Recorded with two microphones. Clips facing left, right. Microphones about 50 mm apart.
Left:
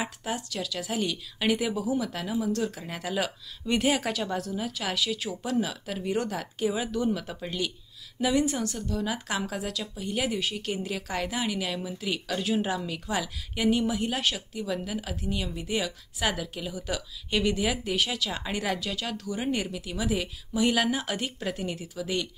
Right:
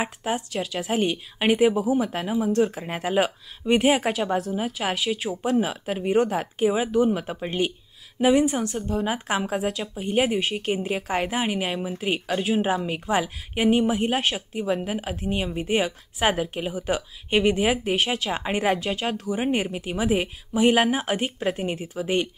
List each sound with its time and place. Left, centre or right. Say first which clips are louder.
0.0 s a woman's voice: right 5 dB; right